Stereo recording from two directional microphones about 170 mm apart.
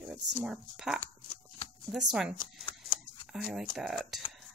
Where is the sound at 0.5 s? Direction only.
5° right (ahead or behind).